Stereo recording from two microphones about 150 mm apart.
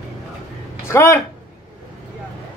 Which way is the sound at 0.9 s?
15° left (ahead or behind).